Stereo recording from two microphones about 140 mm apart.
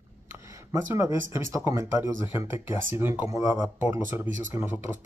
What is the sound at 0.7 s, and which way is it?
Speech, 20° right (ahead or behind).